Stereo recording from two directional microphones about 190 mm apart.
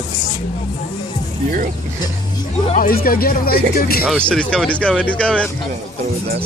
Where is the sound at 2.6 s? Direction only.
40° left (ahead or behind).